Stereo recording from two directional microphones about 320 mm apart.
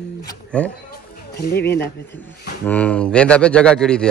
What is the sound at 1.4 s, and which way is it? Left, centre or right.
Speech, left.